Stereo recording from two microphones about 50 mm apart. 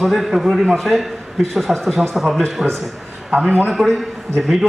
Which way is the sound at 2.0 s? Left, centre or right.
Centre.